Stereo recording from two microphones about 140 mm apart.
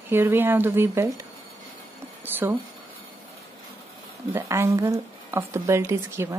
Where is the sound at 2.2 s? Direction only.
15° right (ahead or behind).